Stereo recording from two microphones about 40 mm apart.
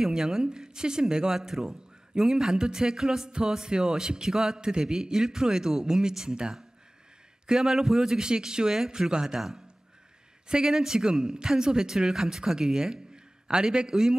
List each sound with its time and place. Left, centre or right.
0.0 s speech: centre